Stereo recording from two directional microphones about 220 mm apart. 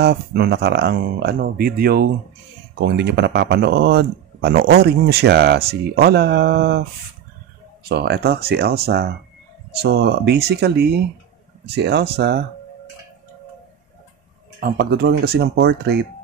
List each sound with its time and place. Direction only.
0.0 s speech: 50° right (ahead or behind)
7.9 s speech: 50° right (ahead or behind)
14.6 s speech: 50° right (ahead or behind)